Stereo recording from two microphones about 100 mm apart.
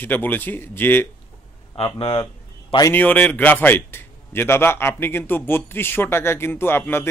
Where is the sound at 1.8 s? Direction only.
70° left (ahead or behind).